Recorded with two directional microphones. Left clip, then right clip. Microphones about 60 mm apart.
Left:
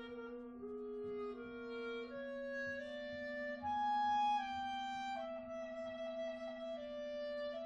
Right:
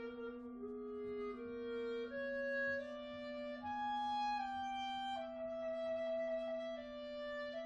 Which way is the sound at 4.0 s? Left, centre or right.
Left.